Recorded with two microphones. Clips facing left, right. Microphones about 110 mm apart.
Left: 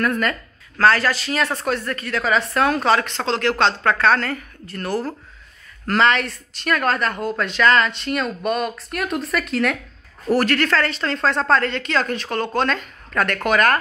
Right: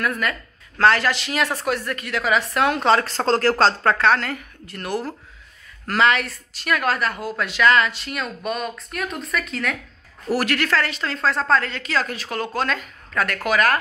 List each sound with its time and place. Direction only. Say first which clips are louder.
0.0 s a woman's voice: left 3 dB; 10° right (ahead or behind)
0.7 s a woman's voice: left 1 dB; 20° right (ahead or behind); by 3.9 s 35° right (ahead or behind)
3.9 s a woman's voice: left 1 dB; 15° right (ahead or behind); by 9.8 s centre (ahead or behind)
10.3 s a woman's voice: left 3 dB; 15° right (ahead or behind)